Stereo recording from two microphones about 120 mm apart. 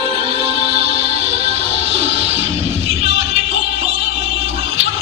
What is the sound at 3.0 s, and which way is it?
Music, 55° right (ahead or behind).